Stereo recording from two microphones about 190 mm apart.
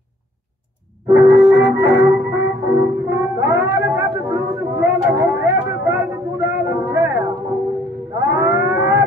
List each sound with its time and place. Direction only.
1.2 s music: 70° left (ahead or behind)
1.6 s music: 15° right (ahead or behind)
8.2 s livestock: 15° right (ahead or behind)